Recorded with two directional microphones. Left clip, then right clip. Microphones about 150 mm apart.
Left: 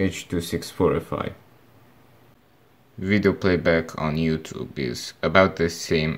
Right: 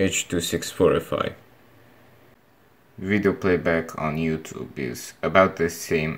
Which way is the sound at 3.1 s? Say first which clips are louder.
Even; 30° left (ahead or behind).